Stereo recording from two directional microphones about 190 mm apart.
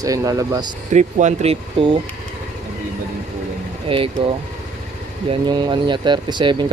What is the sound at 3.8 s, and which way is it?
Speech, 30° right (ahead or behind).